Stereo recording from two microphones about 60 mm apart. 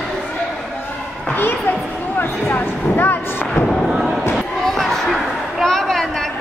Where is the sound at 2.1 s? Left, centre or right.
Left.